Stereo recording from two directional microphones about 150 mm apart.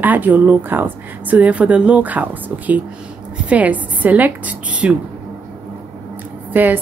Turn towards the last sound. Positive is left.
turn(degrees=-10)  # may be behind; listen again after turning